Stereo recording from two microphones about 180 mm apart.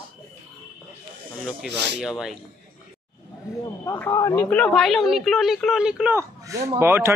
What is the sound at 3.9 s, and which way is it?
A man's voice, 15° left (ahead or behind).